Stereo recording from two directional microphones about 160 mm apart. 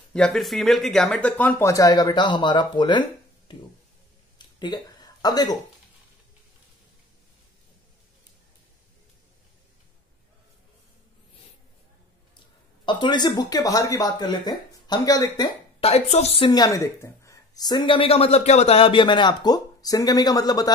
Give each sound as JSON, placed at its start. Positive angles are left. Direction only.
{"t": 0.1, "sound": "speech", "side_deg": 5}
{"t": 4.4, "sound": "a sound", "side_deg": 25}
{"t": 12.8, "sound": "speech", "side_deg": 30}
{"t": 15.8, "sound": "a woman's voice", "side_deg": 40}
{"t": 16.4, "sound": "speech", "side_deg": 25}